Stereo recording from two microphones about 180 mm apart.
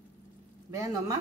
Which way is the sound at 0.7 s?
20° right (ahead or behind).